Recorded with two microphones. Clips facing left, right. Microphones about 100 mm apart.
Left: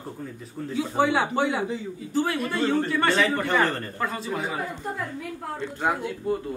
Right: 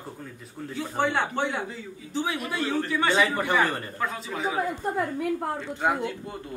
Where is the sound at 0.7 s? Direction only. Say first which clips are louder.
Left 3 dB; 5° left (ahead or behind).